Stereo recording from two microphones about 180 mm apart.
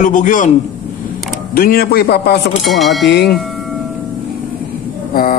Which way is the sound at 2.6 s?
Centre (ahead or behind).